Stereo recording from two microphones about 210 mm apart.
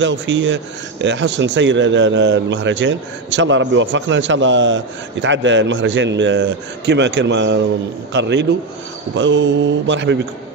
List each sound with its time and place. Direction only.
0.0 s speech: 60° right (ahead or behind)